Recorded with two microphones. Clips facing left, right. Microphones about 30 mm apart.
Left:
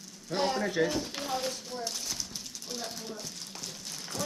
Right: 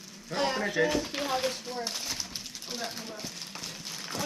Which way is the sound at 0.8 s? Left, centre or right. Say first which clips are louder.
Right 3 dB; right.